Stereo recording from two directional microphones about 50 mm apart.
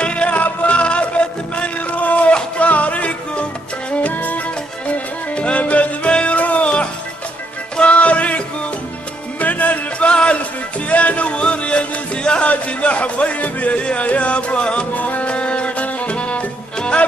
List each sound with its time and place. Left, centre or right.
0.0 s music: left